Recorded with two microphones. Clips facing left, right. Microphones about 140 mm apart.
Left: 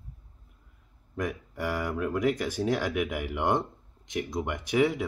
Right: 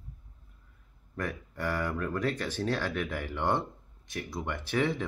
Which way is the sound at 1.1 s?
10° left (ahead or behind).